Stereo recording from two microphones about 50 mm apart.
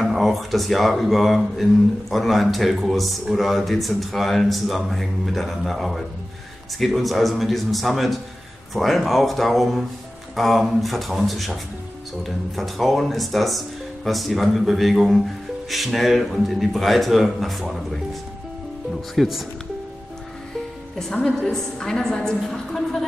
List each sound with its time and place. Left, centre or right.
0.0 s speech: centre
21.4 s a woman's voice: centre